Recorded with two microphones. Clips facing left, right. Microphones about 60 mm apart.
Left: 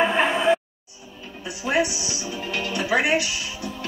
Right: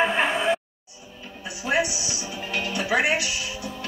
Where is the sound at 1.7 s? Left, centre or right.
Centre.